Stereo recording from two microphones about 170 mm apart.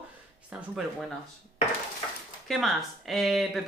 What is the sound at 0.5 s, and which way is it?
Speech, 5° right (ahead or behind).